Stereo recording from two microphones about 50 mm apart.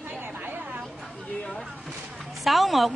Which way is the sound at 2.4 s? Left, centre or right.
Centre.